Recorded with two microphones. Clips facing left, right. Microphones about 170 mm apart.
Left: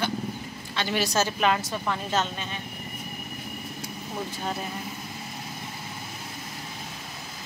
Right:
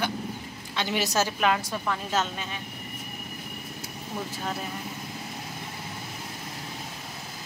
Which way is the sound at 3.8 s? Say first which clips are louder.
Even; centre (ahead or behind).